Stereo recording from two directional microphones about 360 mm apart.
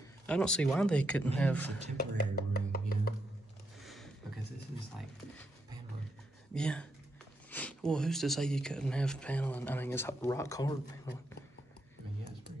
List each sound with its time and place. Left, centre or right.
0.3 s speech: centre
2.1 s music: left
3.8 s a sound: centre
6.5 s speech: centre